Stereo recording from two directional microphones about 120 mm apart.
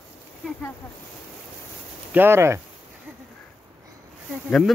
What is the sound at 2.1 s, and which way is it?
Speech, 20° right (ahead or behind).